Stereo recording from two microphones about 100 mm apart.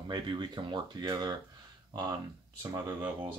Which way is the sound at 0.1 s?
50° right (ahead or behind).